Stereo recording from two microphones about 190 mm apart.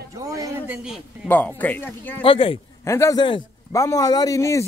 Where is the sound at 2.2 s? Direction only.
30° left (ahead or behind).